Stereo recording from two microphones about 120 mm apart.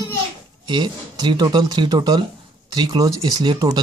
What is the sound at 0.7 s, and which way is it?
Speech, 40° right (ahead or behind).